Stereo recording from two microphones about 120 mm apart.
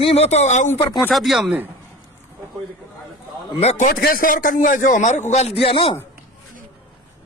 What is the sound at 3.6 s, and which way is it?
Speech, 75° left (ahead or behind).